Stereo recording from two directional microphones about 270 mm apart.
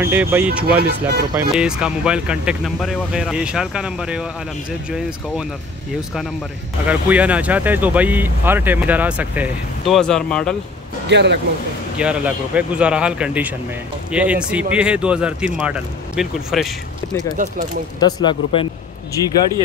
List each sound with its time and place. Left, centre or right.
0.0 s speech: centre
0.7 s speech: right
1.3 s speech: centre
6.9 s speech: centre
11.1 s speech: right
12.0 s speech: centre
17.4 s speech: right
18.0 s speech: centre